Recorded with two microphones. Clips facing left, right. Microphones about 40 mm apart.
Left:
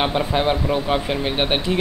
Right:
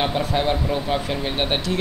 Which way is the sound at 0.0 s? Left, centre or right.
Centre.